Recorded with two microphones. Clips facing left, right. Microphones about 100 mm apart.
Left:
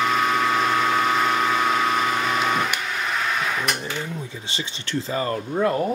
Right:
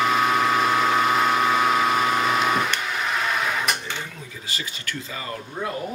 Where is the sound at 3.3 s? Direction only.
Centre (ahead or behind).